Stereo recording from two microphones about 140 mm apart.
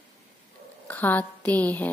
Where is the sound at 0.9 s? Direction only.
10° left (ahead or behind).